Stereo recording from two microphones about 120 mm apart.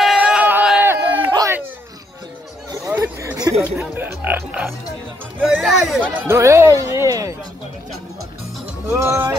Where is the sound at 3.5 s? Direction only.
25° right (ahead or behind).